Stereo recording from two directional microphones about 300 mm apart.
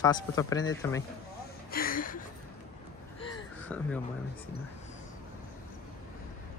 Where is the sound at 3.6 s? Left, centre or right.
Centre.